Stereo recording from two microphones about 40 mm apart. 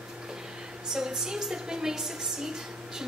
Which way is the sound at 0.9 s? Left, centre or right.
Centre.